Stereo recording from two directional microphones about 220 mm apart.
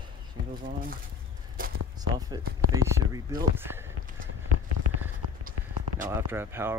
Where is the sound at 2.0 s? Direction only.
15° right (ahead or behind).